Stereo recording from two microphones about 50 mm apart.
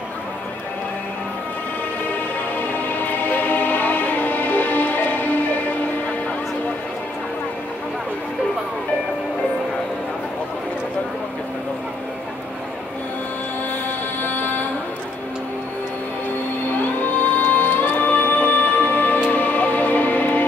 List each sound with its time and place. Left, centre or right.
2.5 s music: left
14.2 s music: left
16.7 s music: left